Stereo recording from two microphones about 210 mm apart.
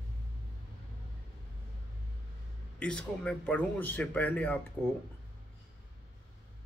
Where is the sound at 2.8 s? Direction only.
5° left (ahead or behind).